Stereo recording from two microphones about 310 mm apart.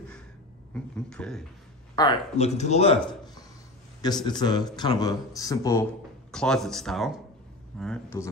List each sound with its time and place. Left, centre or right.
0.7 s speech: centre
2.0 s speech: centre